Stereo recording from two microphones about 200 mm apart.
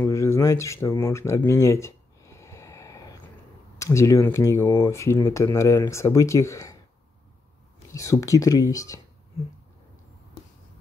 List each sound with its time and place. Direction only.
0.0 s a sound: 15° left (ahead or behind)
3.7 s speech: 15° left (ahead or behind)
7.9 s speech: 15° left (ahead or behind)